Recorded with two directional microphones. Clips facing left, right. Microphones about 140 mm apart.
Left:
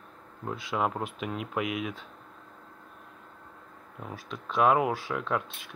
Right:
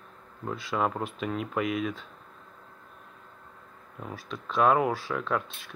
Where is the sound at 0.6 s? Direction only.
15° left (ahead or behind).